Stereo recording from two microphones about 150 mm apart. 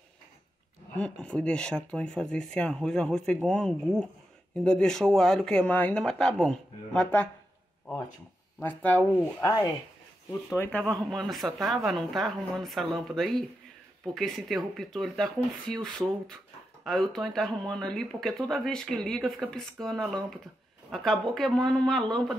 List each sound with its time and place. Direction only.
0.9 s speech: 10° left (ahead or behind)
8.5 s speech: 10° left (ahead or behind)
9.4 s speech: 25° left (ahead or behind)
10.5 s speech: 15° left (ahead or behind)
11.1 s speech: centre (ahead or behind)